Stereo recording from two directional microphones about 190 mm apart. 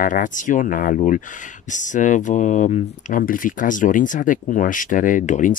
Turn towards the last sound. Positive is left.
turn(degrees=40)  # may be behind; listen again after turning